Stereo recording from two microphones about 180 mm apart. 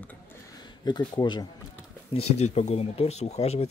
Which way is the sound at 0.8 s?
25° left (ahead or behind).